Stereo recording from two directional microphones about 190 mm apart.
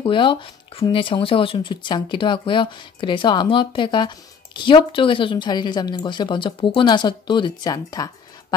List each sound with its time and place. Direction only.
0.0 s speech: 25° left (ahead or behind)